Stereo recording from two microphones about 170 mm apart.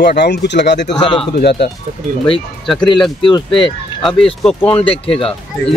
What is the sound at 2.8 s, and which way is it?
Speech, 30° left (ahead or behind).